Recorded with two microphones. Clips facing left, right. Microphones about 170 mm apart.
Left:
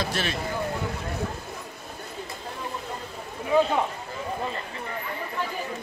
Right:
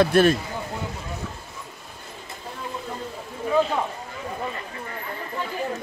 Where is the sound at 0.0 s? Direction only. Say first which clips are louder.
Right 12 dB; 50° right (ahead or behind).